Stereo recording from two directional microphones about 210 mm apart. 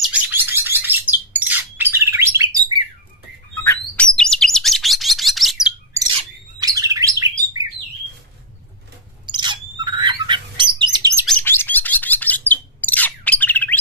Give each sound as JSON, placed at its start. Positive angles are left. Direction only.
{"t": 0.0, "sound": "bird", "side_deg": -10}
{"t": 3.6, "sound": "chirp", "side_deg": 5}
{"t": 6.1, "sound": "bird", "side_deg": -15}
{"t": 9.2, "sound": "bird", "side_deg": -20}
{"t": 11.2, "sound": "chirp", "side_deg": 10}